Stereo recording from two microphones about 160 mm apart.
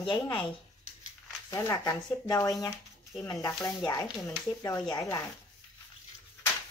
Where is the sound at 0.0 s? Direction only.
30° left (ahead or behind).